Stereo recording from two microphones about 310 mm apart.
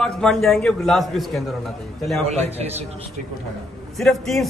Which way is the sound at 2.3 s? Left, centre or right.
Centre.